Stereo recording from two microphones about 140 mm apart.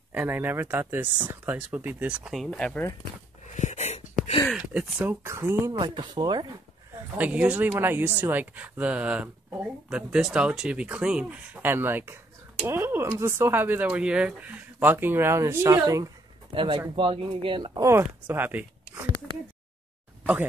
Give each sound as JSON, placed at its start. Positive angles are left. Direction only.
{"t": 0.1, "sound": "speech", "side_deg": -10}
{"t": 2.4, "sound": "speech", "side_deg": 5}
{"t": 3.4, "sound": "a sound", "side_deg": 60}
{"t": 4.7, "sound": "speech", "side_deg": -10}
{"t": 5.2, "sound": "speech", "side_deg": -20}
{"t": 5.7, "sound": "speech", "side_deg": -30}
{"t": 7.2, "sound": "speech", "side_deg": -10}
{"t": 16.5, "sound": "speech", "side_deg": -35}
{"t": 17.8, "sound": "speech", "side_deg": -15}